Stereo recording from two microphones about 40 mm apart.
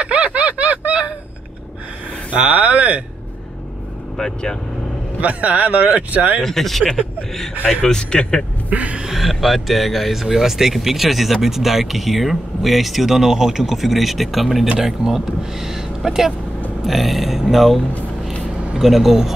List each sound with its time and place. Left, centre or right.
0.0 s a sound: right
2.3 s speech: right
4.2 s speech: centre
5.2 s speech: right
6.4 s speech: centre
7.6 s speech: centre
8.6 s speech: right
9.1 s speech: centre
18.8 s speech: centre